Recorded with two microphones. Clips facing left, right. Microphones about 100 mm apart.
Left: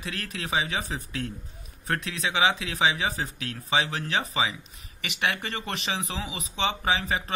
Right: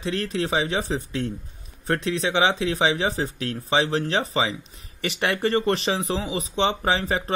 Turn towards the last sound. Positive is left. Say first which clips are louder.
# right 4 dB
turn(degrees=-35)  # may be behind; listen again after turning